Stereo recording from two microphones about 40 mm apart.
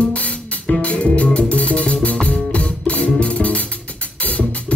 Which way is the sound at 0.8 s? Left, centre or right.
Left.